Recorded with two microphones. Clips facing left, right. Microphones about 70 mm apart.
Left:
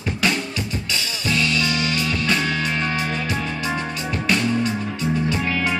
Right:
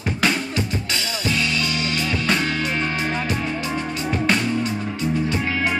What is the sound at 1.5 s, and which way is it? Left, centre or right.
Music, right.